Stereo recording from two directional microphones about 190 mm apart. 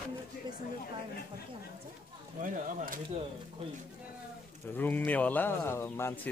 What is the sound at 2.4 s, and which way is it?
Speech, 45° right (ahead or behind).